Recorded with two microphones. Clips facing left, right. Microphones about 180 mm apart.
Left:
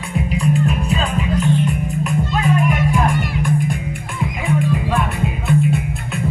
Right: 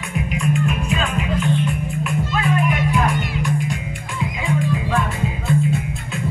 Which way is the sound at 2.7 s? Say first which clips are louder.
Left 2 dB; 50° left (ahead or behind).